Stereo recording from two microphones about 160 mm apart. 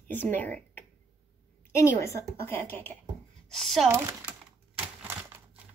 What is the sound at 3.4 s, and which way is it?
Speech, centre (ahead or behind).